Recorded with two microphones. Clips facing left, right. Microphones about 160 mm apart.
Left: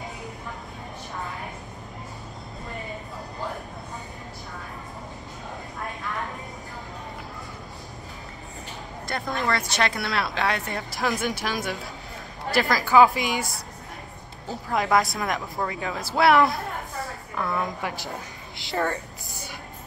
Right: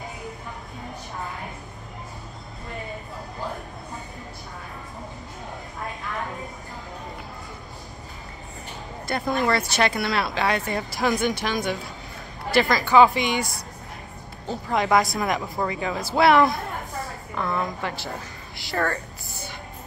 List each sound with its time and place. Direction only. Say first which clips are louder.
9.0 s speech: right 4 dB; 5° right (ahead or behind)
14.5 s a woman's voice: right 2 dB; centre (ahead or behind)